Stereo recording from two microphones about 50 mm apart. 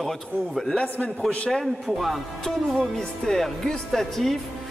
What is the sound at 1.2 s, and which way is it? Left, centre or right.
Speech, left.